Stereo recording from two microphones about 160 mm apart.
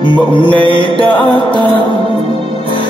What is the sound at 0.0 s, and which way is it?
Music, 30° left (ahead or behind).